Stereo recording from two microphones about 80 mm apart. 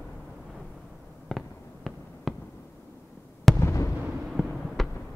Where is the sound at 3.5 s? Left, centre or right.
Left.